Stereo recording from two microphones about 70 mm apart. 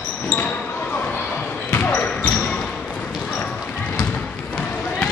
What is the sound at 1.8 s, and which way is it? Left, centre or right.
Basketball bounce, left.